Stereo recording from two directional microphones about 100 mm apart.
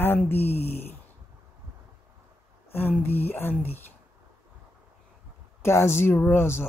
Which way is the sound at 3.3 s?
20° left (ahead or behind).